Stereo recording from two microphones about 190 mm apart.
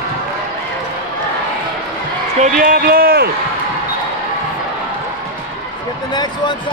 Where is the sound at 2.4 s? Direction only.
50° right (ahead or behind).